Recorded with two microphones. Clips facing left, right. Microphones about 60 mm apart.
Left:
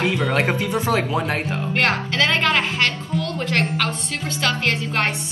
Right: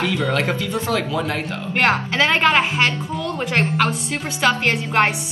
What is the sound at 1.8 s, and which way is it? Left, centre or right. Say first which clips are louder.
A woman's voice: right 3 dB; centre.